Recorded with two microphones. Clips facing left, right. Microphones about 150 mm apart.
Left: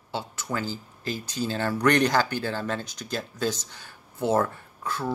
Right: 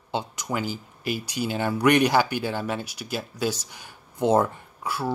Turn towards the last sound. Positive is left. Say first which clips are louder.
# right 2 dB
turn(degrees=-10)  # may be behind; listen again after turning